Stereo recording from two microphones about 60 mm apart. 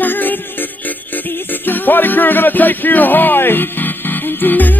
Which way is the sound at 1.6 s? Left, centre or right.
Left.